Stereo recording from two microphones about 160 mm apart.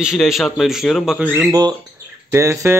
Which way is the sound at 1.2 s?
10° right (ahead or behind).